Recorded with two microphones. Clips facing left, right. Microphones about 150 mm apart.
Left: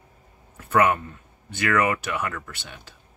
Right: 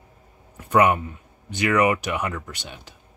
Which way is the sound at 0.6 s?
15° right (ahead or behind).